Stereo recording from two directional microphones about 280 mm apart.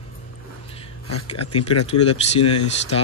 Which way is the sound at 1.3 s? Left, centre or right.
Left.